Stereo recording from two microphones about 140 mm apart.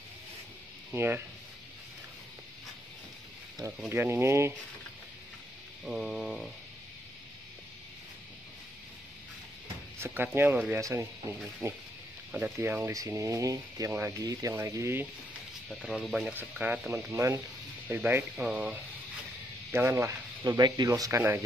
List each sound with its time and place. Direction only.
0.9 s speech: 15° right (ahead or behind)
3.9 s speech: 15° right (ahead or behind)
5.9 s speech: 5° right (ahead or behind)
9.9 s speech: 15° right (ahead or behind)
12.3 s speech: 10° right (ahead or behind)
15.7 s speech: centre (ahead or behind); by 21.4 s 20° right (ahead or behind)